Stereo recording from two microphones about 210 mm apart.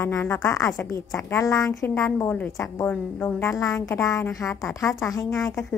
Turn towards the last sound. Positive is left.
turn(degrees=15)  # may be behind; listen again after turning